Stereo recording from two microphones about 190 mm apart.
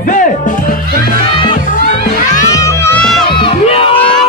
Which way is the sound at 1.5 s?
45° left (ahead or behind).